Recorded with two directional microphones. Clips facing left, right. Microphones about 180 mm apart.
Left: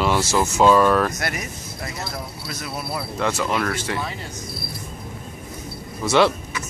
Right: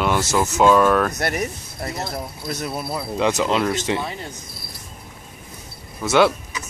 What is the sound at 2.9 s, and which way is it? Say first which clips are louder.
Speech: right 4 dB; 20° right (ahead or behind).